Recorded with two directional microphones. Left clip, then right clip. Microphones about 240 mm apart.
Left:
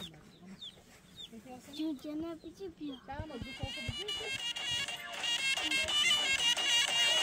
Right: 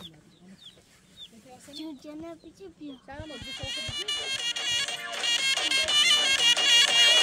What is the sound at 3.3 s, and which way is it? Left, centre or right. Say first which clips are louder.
Music: right 11 dB; right.